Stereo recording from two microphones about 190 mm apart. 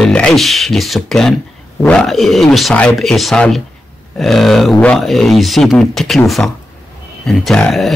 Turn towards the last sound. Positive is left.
turn(degrees=0)  # may be behind; listen again after turning